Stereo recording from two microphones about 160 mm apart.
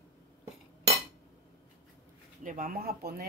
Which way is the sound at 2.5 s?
60° right (ahead or behind).